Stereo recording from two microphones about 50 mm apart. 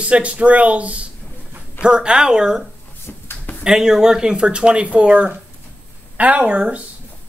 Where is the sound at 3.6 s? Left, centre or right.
Centre.